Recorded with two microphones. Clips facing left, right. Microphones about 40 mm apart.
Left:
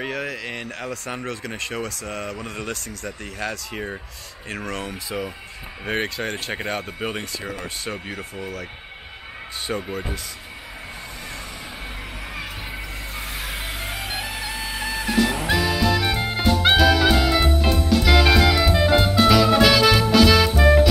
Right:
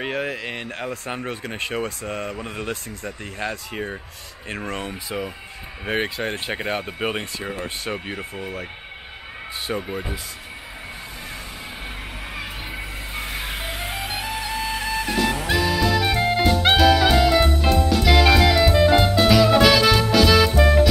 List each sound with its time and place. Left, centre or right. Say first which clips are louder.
0.0 s speech: right 2 dB; right
3.7 s speech: right 1 dB; centre
9.7 s speech: even; centre
13.1 s music: right 2 dB; centre